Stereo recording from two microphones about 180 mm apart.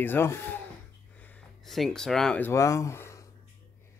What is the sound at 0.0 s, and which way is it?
Speech, 10° left (ahead or behind).